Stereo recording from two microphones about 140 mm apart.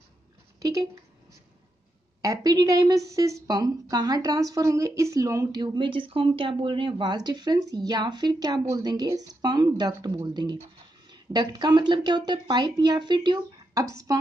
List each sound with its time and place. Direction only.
0.6 s a sound: 25° right (ahead or behind)
2.2 s a woman's voice: 25° right (ahead or behind)
5.6 s speech: 35° right (ahead or behind)